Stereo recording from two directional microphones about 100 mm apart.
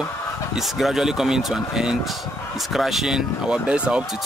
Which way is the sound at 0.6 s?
Centre (ahead or behind).